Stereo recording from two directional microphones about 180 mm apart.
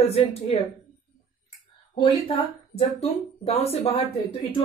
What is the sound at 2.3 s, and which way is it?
Speech, 35° left (ahead or behind).